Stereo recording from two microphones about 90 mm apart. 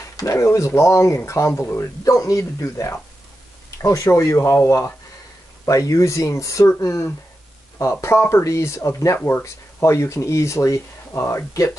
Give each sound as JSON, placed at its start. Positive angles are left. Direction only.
{"t": 0.2, "sound": "speech", "side_deg": 35}
{"t": 2.0, "sound": "speech", "side_deg": 35}